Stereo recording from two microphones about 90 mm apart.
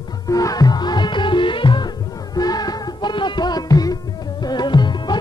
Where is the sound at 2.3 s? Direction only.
45° left (ahead or behind).